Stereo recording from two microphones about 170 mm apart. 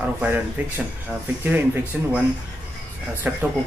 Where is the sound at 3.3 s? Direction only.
10° right (ahead or behind).